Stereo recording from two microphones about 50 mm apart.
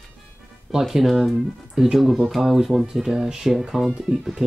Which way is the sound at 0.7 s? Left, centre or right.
Centre.